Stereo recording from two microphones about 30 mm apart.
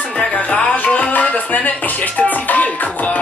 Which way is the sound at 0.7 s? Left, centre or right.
Left.